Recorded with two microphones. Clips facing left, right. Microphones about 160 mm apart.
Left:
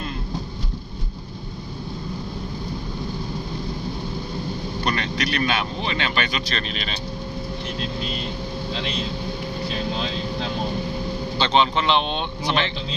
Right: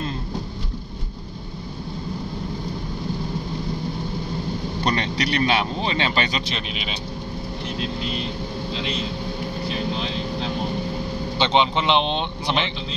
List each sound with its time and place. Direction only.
4.8 s speech: 25° right (ahead or behind)
6.5 s speech: 10° right (ahead or behind)
11.3 s speech: 20° right (ahead or behind)